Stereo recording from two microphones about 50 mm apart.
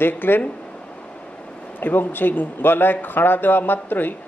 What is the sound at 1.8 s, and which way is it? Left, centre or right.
A man's voice, left.